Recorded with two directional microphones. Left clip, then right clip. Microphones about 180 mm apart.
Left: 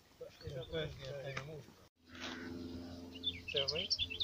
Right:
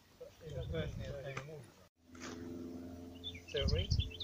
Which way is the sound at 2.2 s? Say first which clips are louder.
Left 3 dB; 65° right (ahead or behind).